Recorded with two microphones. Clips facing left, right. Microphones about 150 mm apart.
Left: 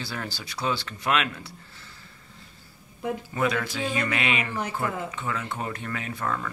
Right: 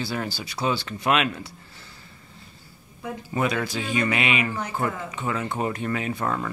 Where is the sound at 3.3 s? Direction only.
20° right (ahead or behind).